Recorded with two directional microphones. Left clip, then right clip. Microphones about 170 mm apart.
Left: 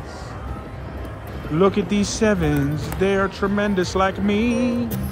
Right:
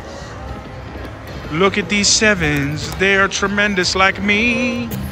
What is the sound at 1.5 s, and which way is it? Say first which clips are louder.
Speech: right 3 dB; 10° left (ahead or behind).